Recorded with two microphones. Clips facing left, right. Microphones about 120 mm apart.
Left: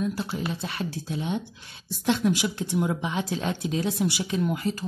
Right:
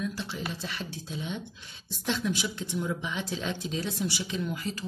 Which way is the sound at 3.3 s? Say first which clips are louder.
Left 5 dB; 45° left (ahead or behind).